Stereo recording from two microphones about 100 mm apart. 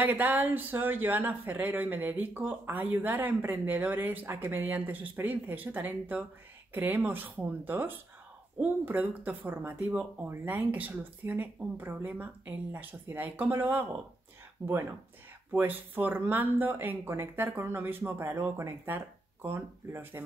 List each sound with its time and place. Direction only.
0.0 s speech: 20° right (ahead or behind)